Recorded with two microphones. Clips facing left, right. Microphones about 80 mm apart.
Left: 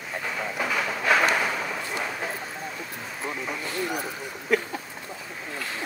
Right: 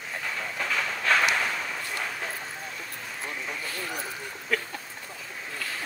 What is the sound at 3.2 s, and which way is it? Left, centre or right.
Speech, centre.